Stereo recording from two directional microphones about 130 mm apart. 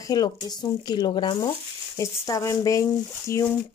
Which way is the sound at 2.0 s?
25° left (ahead or behind).